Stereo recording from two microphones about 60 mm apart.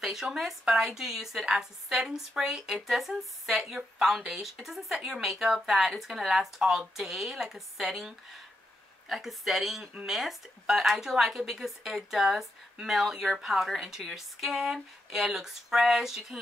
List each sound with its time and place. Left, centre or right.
0.0 s a woman's voice: centre
9.1 s a woman's voice: centre